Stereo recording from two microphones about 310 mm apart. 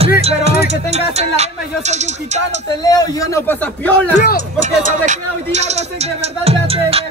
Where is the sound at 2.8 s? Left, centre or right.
Centre.